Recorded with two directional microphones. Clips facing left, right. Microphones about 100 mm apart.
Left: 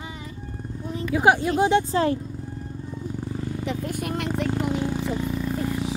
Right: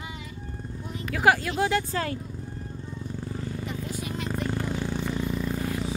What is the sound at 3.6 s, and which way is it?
Vehicle, 65° left (ahead or behind).